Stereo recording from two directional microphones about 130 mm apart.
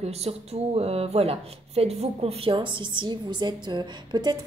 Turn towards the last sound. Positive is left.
turn(degrees=-35)  # may be behind; listen again after turning